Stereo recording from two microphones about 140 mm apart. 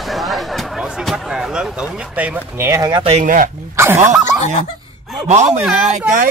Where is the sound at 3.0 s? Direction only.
50° right (ahead or behind).